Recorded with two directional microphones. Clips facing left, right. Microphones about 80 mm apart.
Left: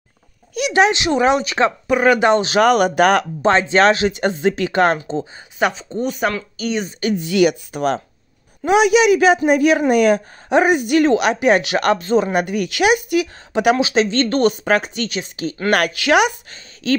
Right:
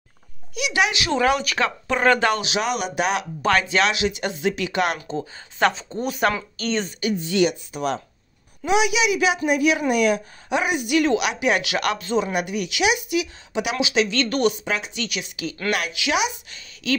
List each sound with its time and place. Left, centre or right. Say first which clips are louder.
0.6 s a woman's voice: left 7 dB; left
1.0 s speech: left 4 dB; left
1.9 s speech: left 3 dB; centre
2.4 s speech: left 10 dB; left
3.4 s speech: left 5 dB; left
3.8 s a woman's voice: left 7 dB; left
5.6 s speech: left 2 dB; centre
7.0 s speech: left 4 dB; left
7.2 s speech: left 5 dB; left
7.7 s a woman's voice: left 5 dB; left
15.7 s speech: left 9 dB; left
16.4 s a woman's voice: left 5 dB; left